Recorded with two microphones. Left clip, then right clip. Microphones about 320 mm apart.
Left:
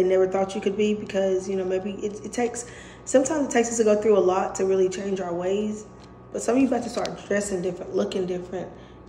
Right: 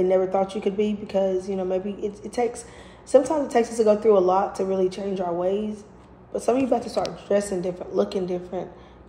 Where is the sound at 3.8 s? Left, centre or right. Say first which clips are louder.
Right 2 dB; centre.